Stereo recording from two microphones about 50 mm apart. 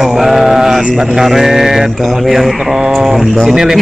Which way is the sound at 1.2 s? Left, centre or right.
Centre.